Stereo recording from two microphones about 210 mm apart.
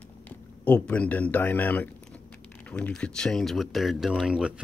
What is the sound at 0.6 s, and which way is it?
Speech, 5° left (ahead or behind).